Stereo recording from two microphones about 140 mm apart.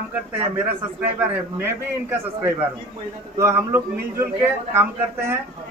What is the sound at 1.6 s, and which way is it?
A man's voice, 15° right (ahead or behind).